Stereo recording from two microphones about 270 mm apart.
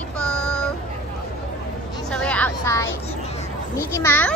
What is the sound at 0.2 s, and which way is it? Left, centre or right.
Child singing, centre.